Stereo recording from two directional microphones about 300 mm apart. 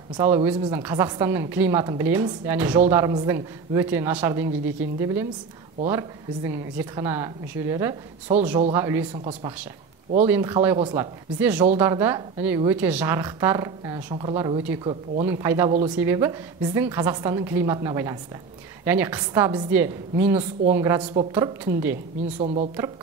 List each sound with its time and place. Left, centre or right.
0.2 s a woman's voice: centre
21.0 s speech: centre
21.3 s a woman's voice: centre
22.4 s speech: right